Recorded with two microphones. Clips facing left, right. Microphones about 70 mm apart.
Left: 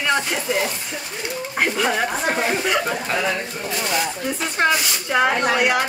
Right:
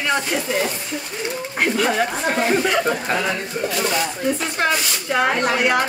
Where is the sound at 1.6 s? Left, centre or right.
Centre.